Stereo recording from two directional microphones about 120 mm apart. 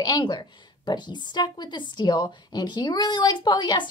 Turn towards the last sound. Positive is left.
turn(degrees=40)  # may be behind; listen again after turning